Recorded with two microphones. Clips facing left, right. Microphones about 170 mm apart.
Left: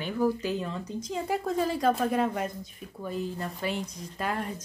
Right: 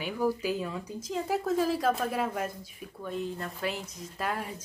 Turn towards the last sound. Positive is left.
turn(degrees=0)  # may be behind; listen again after turning